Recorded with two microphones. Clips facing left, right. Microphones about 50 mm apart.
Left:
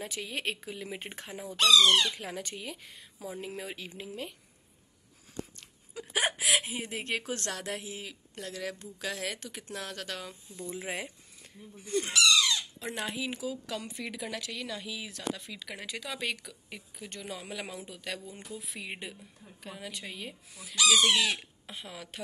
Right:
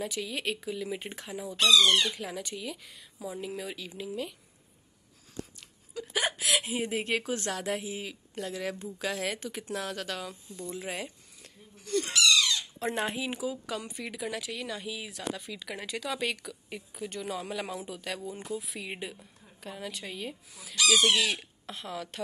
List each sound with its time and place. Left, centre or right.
0.0 s speech: left
5.9 s hiccup: centre
6.5 s a sound: centre
6.9 s speech: centre
11.9 s a sound: left
13.2 s speech: centre
21.0 s chicken: left
21.6 s speech: centre